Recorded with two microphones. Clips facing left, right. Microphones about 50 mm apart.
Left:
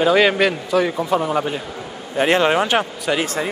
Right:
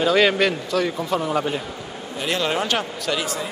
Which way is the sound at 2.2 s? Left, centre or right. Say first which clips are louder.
Left 7 dB; left.